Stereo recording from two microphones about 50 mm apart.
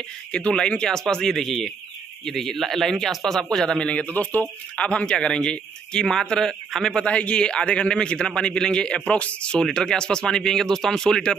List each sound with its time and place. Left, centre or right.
0.3 s a man's voice: left
3.8 s a man's voice: left; by 7.0 s centre
7.1 s speech: left